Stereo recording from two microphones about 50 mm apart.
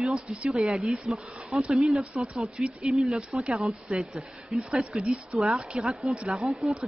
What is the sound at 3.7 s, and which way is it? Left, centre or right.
Speech, centre.